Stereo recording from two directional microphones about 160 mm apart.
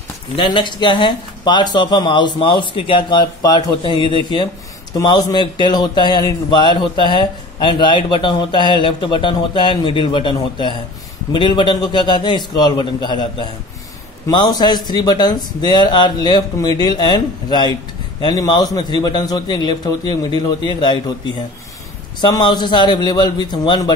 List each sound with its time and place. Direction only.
0.4 s speech: 30° left (ahead or behind)
22.2 s speech: 30° left (ahead or behind)